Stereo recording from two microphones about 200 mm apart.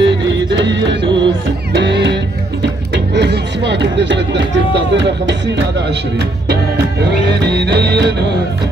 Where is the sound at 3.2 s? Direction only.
60° right (ahead or behind).